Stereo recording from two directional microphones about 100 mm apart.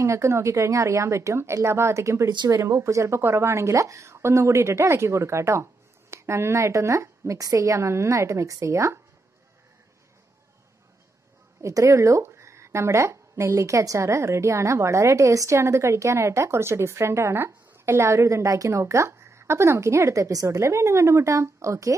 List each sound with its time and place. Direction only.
0.0 s speech: 30° right (ahead or behind)
11.6 s speech: 30° right (ahead or behind)